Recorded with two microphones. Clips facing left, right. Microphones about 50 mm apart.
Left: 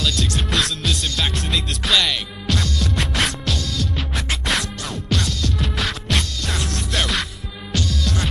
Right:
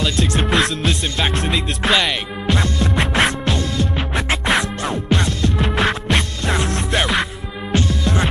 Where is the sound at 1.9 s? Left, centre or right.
Right.